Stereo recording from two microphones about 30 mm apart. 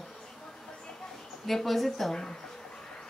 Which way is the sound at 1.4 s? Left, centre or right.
Centre.